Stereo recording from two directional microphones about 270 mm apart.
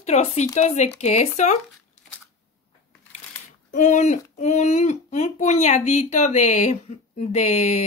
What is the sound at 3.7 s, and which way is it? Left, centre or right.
Speech, left.